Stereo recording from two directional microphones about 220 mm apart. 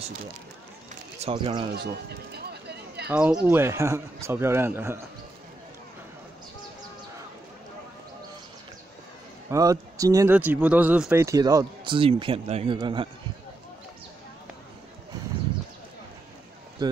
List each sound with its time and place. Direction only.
1.2 s speech: 25° right (ahead or behind)
1.7 s run: 45° right (ahead or behind)
3.1 s speech: 5° right (ahead or behind)
9.5 s speech: 15° right (ahead or behind)
16.8 s a sound: 20° right (ahead or behind)